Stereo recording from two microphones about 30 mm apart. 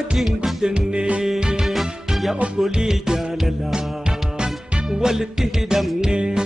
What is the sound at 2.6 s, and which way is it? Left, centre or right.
Music, right.